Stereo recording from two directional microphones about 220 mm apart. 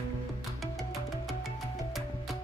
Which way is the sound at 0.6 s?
Centre (ahead or behind).